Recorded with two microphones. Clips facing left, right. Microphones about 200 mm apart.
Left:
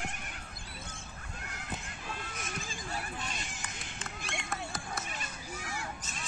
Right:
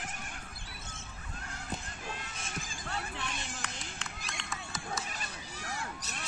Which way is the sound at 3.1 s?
70° right (ahead or behind).